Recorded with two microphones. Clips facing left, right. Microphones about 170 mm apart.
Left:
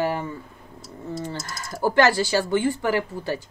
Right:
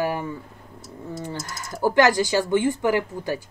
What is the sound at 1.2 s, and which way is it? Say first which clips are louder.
Speech: even; 15° right (ahead or behind).